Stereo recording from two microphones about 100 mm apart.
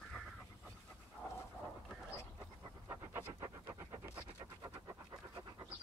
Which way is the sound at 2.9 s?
25° right (ahead or behind).